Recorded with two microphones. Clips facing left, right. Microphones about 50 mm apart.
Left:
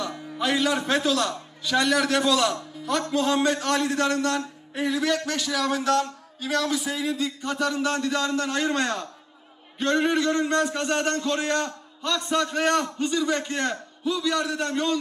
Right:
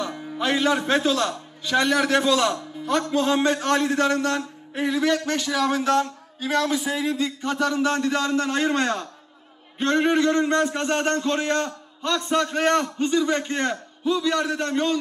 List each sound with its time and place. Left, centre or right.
0.0 s a man's voice: right